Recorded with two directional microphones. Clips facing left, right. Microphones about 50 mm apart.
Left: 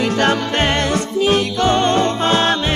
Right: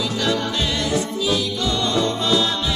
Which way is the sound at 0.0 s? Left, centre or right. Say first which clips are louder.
Left 5 dB; left.